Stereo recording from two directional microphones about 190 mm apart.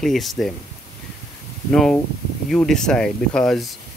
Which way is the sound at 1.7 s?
5° left (ahead or behind).